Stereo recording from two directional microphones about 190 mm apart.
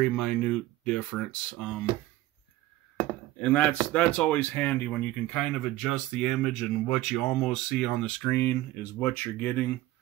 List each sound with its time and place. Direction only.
0.0 s speech: 5° left (ahead or behind)
3.3 s speech: 5° left (ahead or behind)